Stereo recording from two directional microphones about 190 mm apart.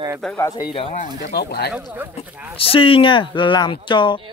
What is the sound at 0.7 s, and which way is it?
Speech, 35° left (ahead or behind).